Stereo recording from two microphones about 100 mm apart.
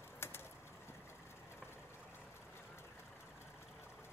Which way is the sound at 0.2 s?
25° left (ahead or behind).